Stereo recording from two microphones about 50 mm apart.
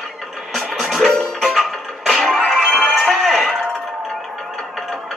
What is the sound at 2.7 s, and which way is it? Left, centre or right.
Music, centre.